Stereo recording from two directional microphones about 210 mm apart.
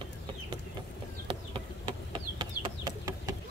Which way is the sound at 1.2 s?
25° right (ahead or behind).